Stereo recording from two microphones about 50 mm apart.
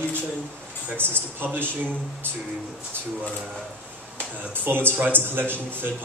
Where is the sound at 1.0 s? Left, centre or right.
Right.